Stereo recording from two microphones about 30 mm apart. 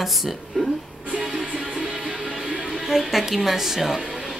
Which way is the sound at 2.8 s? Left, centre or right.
Centre.